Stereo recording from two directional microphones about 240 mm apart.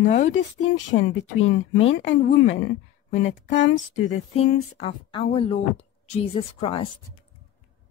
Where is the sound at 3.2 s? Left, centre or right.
Left.